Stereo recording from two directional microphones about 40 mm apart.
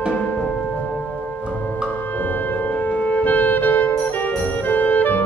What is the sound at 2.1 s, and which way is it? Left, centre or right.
Music, left.